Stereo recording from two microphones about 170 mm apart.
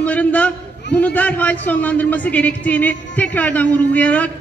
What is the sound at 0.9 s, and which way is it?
A man's voice, 10° left (ahead or behind).